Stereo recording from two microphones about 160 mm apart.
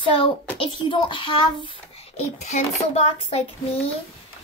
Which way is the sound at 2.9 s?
40° left (ahead or behind).